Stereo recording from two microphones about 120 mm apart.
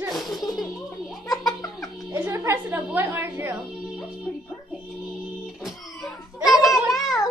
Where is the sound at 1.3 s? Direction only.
30° left (ahead or behind).